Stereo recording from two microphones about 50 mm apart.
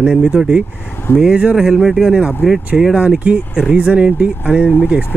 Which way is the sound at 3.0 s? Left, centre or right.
Right.